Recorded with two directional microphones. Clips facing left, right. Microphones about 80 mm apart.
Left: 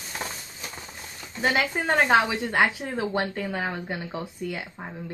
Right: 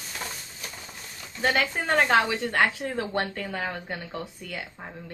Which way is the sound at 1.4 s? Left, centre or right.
Centre.